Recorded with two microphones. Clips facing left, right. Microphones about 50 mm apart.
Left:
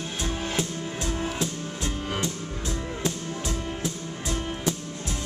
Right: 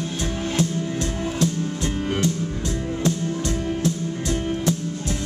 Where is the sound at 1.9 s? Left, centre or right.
Right.